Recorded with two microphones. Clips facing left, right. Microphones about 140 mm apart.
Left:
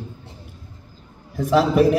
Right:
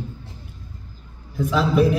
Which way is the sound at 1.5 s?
60° left (ahead or behind).